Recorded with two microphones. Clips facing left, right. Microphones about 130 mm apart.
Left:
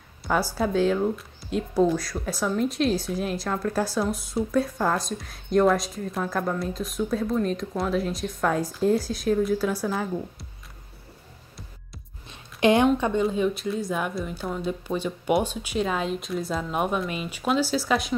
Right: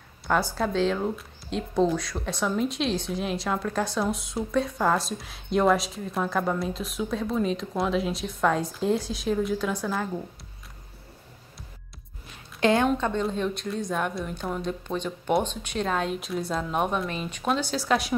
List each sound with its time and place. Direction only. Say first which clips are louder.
0.6 s speech: left 2 dB; 5° left (ahead or behind)
12.3 s a sound: left 2 dB; 20° left (ahead or behind)
12.8 s speech: left 3 dB; 10° left (ahead or behind)